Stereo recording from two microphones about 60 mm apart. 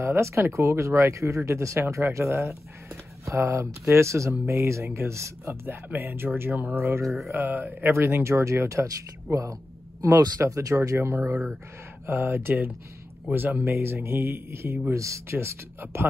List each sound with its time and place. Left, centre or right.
0.0 s speech: right
6.8 s speech: right
7.1 s mantra: centre
7.3 s speech: right
7.9 s speech: right
8.8 s speech: right
10.1 s speech: right
10.4 s speech: right
15.0 s speech: right
15.3 s speech: right